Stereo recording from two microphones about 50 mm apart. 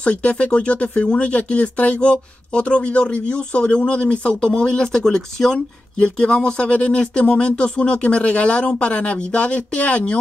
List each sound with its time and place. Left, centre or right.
0.0 s speech: left